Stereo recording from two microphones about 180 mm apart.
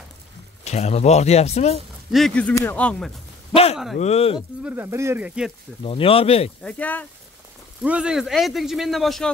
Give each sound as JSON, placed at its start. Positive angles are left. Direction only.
{"t": 0.7, "sound": "speech", "side_deg": 35}
{"t": 2.0, "sound": "speech", "side_deg": 0}
{"t": 4.0, "sound": "speech", "side_deg": 35}
{"t": 4.6, "sound": "speech", "side_deg": -15}
{"t": 5.9, "sound": "speech", "side_deg": 30}
{"t": 6.6, "sound": "speech", "side_deg": 10}
{"t": 7.8, "sound": "speech", "side_deg": -5}